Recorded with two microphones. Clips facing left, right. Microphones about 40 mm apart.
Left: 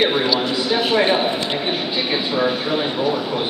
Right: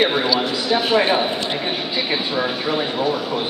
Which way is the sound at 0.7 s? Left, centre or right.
Centre.